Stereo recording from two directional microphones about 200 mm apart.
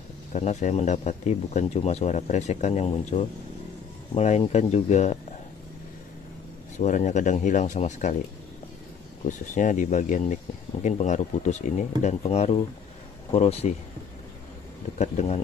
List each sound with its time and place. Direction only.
0.3 s speech: 35° left (ahead or behind)
6.8 s speech: 35° left (ahead or behind)
9.2 s speech: 40° left (ahead or behind)
15.0 s speech: 35° left (ahead or behind)